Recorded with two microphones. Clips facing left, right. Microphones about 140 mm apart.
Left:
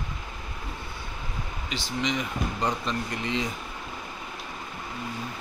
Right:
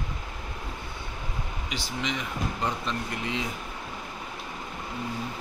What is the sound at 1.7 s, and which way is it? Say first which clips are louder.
Speech: left 3 dB; 5° right (ahead or behind).